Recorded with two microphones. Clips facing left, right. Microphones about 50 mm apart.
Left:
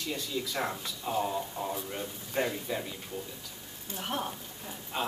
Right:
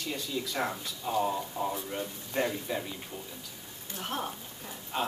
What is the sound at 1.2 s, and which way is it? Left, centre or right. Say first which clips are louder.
Speech: right 2 dB; centre.